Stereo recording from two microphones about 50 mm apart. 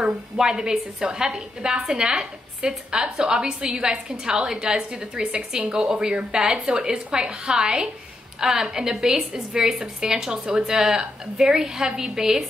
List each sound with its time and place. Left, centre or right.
0.0 s a woman's voice: centre